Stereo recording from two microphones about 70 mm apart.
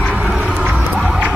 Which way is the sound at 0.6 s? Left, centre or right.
Centre.